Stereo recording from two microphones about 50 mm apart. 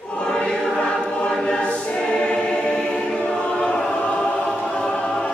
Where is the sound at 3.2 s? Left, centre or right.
Left.